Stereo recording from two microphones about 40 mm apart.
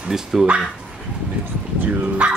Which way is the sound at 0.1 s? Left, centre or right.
Centre.